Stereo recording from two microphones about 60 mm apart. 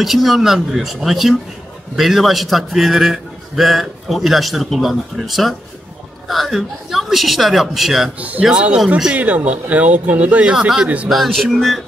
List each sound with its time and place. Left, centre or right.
0.0 s a man's voice: centre
8.2 s speech: right
8.7 s speech: centre
9.1 s speech: right
10.5 s speech: centre
11.1 s a man's voice: centre